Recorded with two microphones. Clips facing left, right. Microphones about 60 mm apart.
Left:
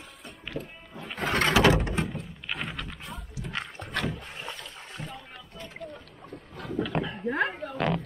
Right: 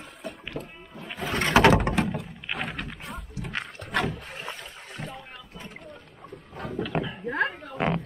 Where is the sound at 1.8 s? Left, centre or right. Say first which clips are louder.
Right 4 dB; right.